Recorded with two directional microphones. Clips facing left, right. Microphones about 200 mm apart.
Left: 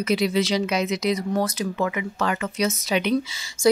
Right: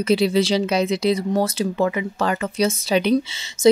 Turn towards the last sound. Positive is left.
turn(degrees=-25)  # may be behind; listen again after turning